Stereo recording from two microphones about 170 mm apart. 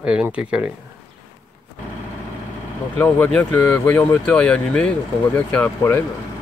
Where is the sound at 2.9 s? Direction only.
10° left (ahead or behind).